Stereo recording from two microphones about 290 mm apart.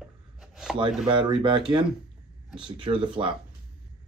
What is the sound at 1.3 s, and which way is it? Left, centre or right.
Speech, centre.